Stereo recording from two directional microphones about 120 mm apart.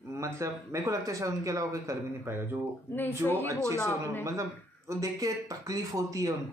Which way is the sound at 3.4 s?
25° right (ahead or behind).